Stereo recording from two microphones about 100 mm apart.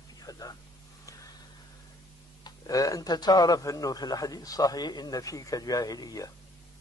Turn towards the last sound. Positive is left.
turn(degrees=40)  # may be behind; listen again after turning